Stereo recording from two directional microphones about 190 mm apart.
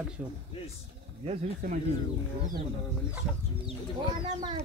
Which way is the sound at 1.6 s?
50° right (ahead or behind).